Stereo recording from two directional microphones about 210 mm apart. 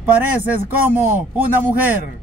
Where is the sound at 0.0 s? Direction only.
5° right (ahead or behind).